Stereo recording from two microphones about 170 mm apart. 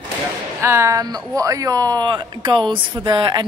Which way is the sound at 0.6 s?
15° right (ahead or behind).